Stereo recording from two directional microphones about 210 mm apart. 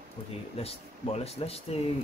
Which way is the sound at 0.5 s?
30° left (ahead or behind).